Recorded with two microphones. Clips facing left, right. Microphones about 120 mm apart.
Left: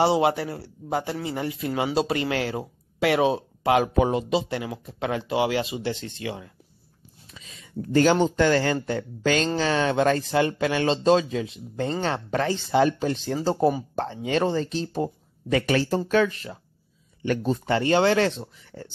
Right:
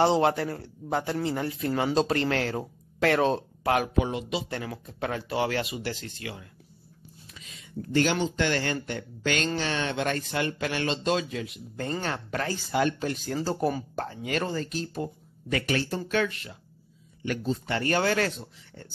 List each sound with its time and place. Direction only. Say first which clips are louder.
0.0 s speech: left 2 dB; 10° left (ahead or behind)
3.9 s speech: left 6 dB; 35° left (ahead or behind)
4.5 s speech: left 4 dB; 15° left (ahead or behind)
7.9 s speech: left 6 dB; 40° left (ahead or behind)
17.6 s speech: left 6 dB; 25° left (ahead or behind)
18.7 s speech: left 7 dB; 90° left